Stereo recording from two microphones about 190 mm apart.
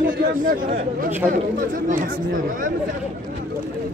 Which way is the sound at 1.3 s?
45° right (ahead or behind).